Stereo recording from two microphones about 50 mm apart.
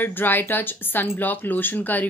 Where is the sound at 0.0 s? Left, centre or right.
Left.